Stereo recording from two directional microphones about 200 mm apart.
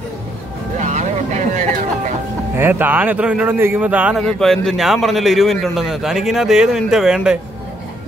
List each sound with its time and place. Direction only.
0.7 s music: 35° right (ahead or behind)
2.5 s a man's voice: 10° right (ahead or behind)